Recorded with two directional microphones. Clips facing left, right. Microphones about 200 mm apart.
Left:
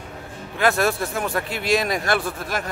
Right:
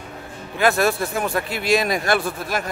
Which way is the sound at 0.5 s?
10° right (ahead or behind).